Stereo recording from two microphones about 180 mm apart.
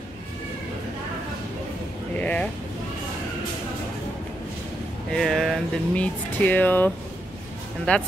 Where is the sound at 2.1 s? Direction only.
5° left (ahead or behind).